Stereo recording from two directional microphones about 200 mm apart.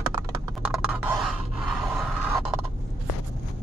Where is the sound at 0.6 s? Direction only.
5° right (ahead or behind).